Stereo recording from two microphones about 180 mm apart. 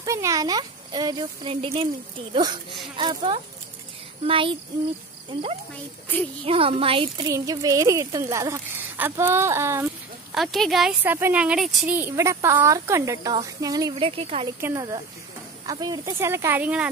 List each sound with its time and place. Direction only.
0.0 s speech: 15° right (ahead or behind)
3.0 s a woman's voice: 25° right (ahead or behind)
7.3 s a woman's voice: 20° right (ahead or behind)
10.3 s a woman's voice: centre (ahead or behind); by 14.5 s 30° right (ahead or behind)
14.6 s a woman's voice: 15° right (ahead or behind)